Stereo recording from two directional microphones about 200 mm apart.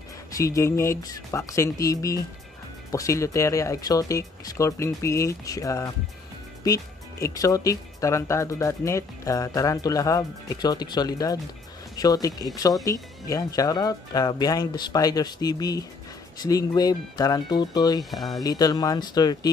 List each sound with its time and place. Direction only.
0.4 s speech: 15° left (ahead or behind)